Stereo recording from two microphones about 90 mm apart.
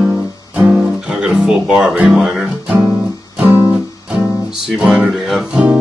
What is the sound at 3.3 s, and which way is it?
Guitar, 20° right (ahead or behind).